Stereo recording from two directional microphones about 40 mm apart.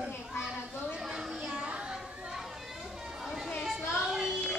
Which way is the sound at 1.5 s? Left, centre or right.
Right.